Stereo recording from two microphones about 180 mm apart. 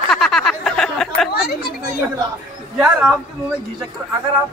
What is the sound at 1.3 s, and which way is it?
Speech, 60° left (ahead or behind).